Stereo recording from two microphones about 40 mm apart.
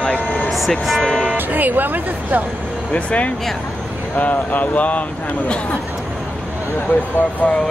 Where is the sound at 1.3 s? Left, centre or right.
Right.